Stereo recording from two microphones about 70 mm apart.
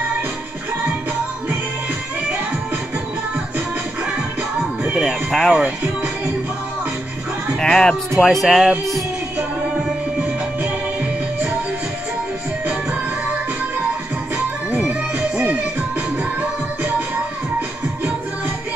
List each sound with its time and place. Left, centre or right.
4.9 s speech: centre
7.6 s speech: centre
14.9 s music: centre